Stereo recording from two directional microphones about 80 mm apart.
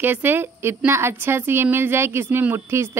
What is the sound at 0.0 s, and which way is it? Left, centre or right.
A woman's voice, right.